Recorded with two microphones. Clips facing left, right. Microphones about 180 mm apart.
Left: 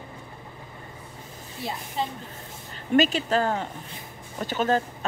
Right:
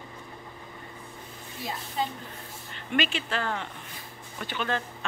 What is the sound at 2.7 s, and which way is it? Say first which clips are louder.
Speech: left 8 dB; 40° left (ahead or behind).